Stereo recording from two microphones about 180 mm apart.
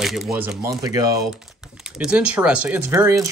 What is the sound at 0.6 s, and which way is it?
Speech, 20° right (ahead or behind).